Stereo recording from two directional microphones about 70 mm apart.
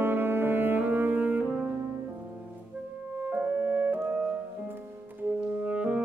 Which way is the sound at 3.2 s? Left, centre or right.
Right.